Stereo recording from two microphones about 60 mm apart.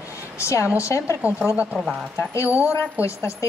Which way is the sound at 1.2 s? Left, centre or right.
Right.